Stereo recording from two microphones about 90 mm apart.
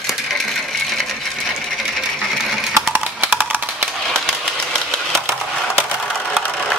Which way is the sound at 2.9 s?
20° right (ahead or behind).